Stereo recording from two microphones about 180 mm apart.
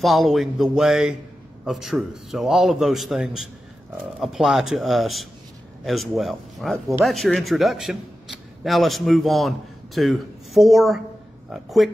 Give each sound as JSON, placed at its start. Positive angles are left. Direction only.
{"t": 0.0, "sound": "speech", "side_deg": 0}